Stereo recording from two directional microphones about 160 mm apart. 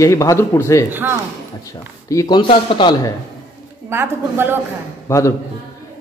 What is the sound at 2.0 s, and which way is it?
Speech, 25° left (ahead or behind).